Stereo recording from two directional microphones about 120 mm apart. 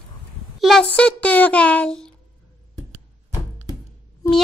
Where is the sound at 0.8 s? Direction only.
10° left (ahead or behind).